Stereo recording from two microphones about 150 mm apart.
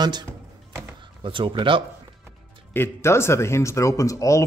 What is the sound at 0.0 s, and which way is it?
Speech, 30° right (ahead or behind).